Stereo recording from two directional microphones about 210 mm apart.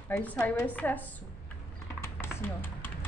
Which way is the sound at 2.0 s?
10° left (ahead or behind).